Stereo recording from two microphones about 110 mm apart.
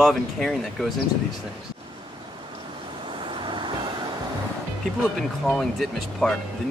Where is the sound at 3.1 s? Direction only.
45° right (ahead or behind).